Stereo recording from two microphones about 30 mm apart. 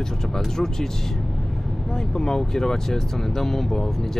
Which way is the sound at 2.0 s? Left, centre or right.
Centre.